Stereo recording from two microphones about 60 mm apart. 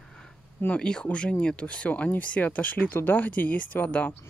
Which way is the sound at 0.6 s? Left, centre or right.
Centre.